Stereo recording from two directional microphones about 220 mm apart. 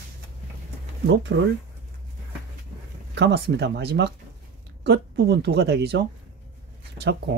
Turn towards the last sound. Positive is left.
turn(degrees=-50)  # may be behind; listen again after turning